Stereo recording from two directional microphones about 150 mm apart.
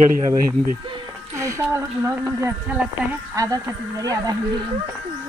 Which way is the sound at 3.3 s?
25° right (ahead or behind).